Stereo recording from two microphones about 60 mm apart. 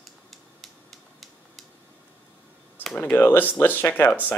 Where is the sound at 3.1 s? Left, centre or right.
Left.